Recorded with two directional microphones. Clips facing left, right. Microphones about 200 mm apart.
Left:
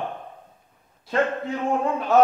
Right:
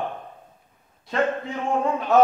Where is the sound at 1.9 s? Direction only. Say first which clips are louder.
Even; centre (ahead or behind).